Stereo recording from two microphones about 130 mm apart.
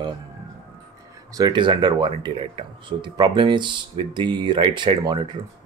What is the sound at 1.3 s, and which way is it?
Speech, 30° right (ahead or behind).